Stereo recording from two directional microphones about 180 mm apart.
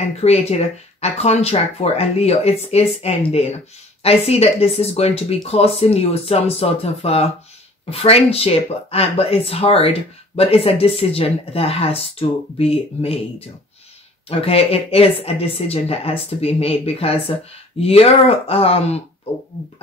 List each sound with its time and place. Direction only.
0.0 s speech: 35° left (ahead or behind)
14.4 s speech: 30° left (ahead or behind)